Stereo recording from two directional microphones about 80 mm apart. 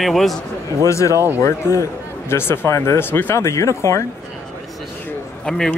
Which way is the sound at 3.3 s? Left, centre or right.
Left.